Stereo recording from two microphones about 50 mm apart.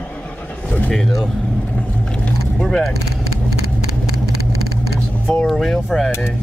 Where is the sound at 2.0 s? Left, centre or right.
Centre.